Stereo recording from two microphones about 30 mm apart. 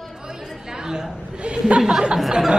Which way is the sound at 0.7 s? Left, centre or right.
Right.